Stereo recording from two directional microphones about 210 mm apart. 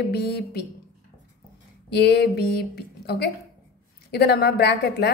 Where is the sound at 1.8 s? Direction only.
50° left (ahead or behind).